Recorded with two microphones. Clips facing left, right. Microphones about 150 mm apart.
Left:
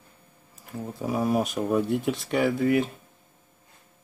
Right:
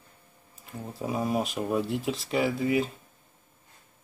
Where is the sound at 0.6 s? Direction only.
Centre (ahead or behind).